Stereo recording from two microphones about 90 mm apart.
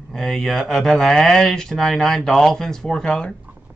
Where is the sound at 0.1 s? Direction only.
5° left (ahead or behind).